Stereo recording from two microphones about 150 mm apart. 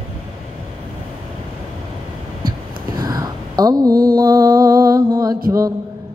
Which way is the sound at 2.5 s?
25° right (ahead or behind).